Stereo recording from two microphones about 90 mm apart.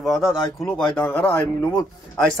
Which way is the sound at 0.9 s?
20° left (ahead or behind).